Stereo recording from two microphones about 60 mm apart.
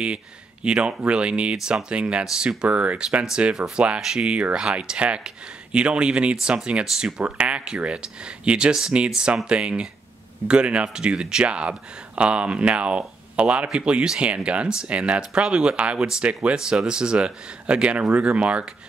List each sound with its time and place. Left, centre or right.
0.7 s speech: centre